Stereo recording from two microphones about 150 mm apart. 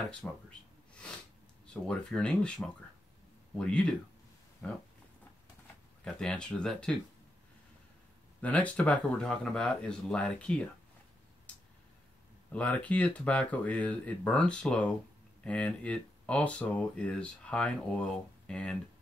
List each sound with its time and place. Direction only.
0.1 s speech: 5° left (ahead or behind)
1.7 s speech: 5° left (ahead or behind)
4.6 s a sound: 10° left (ahead or behind)
6.0 s speech: 5° left (ahead or behind)
8.4 s speech: 10° left (ahead or behind)
11.5 s a sound: 10° left (ahead or behind)
12.5 s speech: 10° left (ahead or behind)